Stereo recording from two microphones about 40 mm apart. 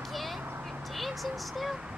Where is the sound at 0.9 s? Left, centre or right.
Centre.